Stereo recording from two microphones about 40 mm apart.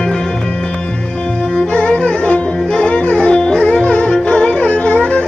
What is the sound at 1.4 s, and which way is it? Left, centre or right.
Music, left.